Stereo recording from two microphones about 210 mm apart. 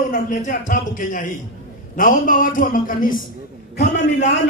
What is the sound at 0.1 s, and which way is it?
Speech, 40° left (ahead or behind).